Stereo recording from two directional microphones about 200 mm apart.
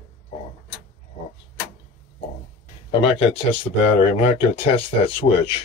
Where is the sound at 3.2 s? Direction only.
30° left (ahead or behind).